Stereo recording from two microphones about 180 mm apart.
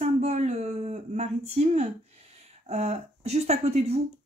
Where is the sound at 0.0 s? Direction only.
40° right (ahead or behind).